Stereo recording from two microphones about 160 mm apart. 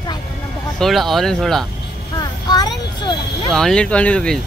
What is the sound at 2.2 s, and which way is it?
Vehicle, 25° left (ahead or behind).